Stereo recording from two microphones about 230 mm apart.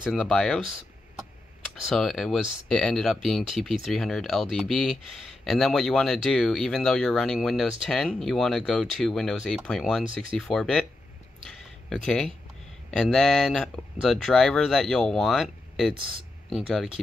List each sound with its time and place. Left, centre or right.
0.0 s speech: centre
1.9 s speech: centre
11.9 s speech: centre